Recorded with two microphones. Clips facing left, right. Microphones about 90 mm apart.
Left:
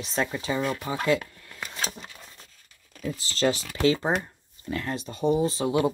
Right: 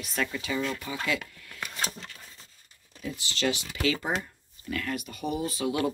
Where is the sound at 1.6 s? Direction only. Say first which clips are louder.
Even; 5° right (ahead or behind).